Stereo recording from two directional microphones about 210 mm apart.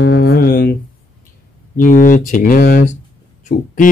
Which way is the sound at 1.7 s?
40° left (ahead or behind).